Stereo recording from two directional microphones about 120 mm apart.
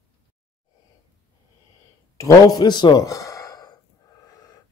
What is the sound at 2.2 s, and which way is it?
Speech, 25° left (ahead or behind).